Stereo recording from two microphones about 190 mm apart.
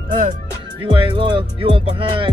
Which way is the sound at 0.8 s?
25° right (ahead or behind).